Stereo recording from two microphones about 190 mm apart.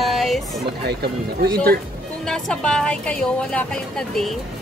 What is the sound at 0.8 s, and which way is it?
Speech, 55° right (ahead or behind).